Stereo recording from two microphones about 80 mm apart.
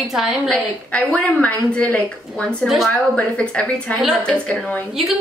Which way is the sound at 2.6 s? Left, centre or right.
Centre.